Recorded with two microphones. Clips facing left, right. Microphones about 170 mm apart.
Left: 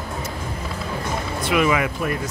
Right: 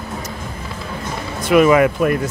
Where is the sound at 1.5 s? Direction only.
45° right (ahead or behind).